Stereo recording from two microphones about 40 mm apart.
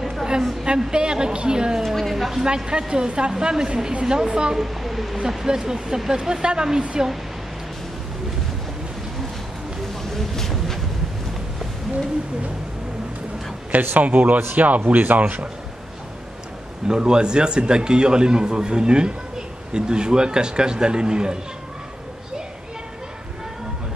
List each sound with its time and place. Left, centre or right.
0.1 s a sound: centre
0.9 s a man's voice: right
1.8 s a woman's voice: centre
2.4 s a man's voice: centre
4.6 s a woman's voice: centre
5.5 s a man's voice: centre
10.0 s a sound: centre
14.0 s speech: right
16.8 s a man's voice: centre